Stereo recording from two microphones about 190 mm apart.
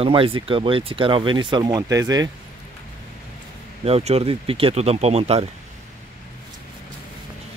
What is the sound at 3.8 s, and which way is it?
Speech, 35° right (ahead or behind).